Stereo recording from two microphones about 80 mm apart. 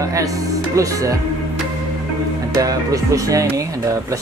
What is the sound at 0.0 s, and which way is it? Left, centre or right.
Speech, right.